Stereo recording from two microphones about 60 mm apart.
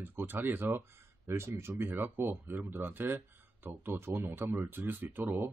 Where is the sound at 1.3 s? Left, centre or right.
Right.